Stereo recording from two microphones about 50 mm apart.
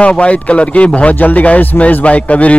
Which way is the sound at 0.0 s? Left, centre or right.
Left.